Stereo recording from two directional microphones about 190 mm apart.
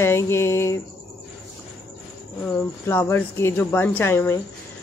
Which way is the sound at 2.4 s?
10° left (ahead or behind).